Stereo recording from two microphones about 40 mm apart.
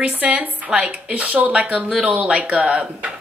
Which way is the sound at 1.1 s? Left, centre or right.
Right.